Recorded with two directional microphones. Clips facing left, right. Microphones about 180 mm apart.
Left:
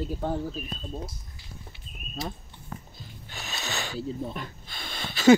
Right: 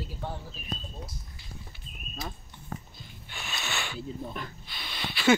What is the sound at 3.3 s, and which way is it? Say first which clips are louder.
Music: left 1 dB; 40° left (ahead or behind).